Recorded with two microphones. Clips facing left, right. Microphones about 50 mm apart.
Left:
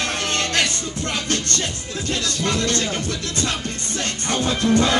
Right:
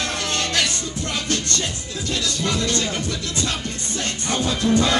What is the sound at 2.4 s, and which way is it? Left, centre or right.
Music, left.